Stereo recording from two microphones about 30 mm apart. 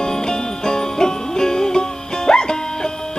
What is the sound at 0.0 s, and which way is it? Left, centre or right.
Music, left.